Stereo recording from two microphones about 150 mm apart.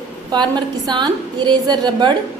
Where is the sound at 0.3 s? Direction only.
30° right (ahead or behind).